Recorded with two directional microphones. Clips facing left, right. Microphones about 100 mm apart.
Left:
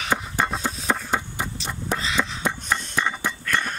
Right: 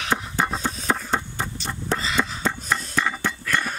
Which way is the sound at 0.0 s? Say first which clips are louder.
Even; centre (ahead or behind).